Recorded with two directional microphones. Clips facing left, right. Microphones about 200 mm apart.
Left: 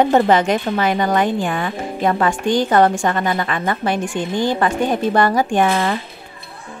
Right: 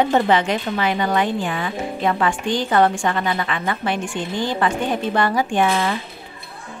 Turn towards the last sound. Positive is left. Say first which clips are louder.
# left 2 dB
turn(degrees=45)  # may be behind; listen again after turning